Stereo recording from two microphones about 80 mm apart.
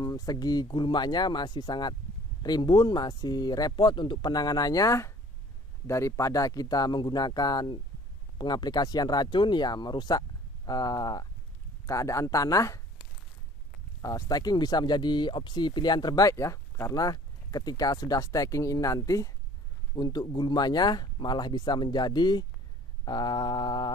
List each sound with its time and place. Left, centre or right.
0.0 s speech: left
11.8 s speech: left
14.0 s speech: left
16.3 s speech: left
16.9 s speech: left
20.0 s speech: left